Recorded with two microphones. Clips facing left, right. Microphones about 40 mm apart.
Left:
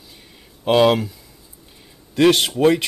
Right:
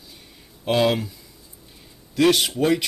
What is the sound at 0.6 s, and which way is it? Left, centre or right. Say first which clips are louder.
Speech: left 5 dB; left.